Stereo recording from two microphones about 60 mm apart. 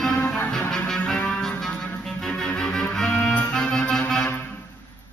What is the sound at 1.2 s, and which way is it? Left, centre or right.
Music, centre.